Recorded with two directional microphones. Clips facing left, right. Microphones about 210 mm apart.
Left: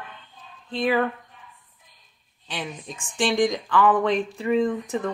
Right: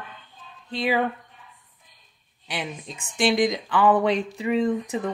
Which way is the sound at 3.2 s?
15° right (ahead or behind).